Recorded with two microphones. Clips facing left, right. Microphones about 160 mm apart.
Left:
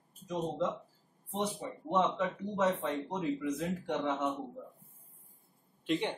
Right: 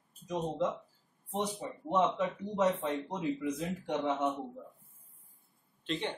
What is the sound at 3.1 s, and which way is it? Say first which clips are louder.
Speech: even; 15° right (ahead or behind).